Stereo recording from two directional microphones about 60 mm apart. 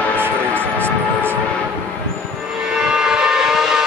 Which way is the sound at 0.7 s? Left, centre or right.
Right.